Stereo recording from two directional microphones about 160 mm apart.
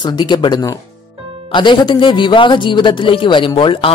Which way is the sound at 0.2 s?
30° left (ahead or behind).